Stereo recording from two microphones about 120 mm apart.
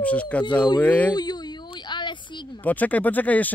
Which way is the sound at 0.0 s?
10° left (ahead or behind).